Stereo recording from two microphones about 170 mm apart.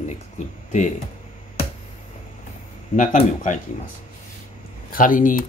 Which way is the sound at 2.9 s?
50° left (ahead or behind).